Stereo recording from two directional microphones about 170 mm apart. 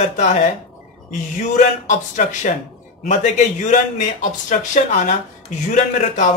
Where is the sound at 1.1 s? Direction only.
45° left (ahead or behind).